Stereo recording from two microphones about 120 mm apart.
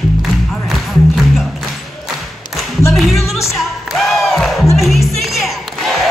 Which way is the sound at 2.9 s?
Centre (ahead or behind).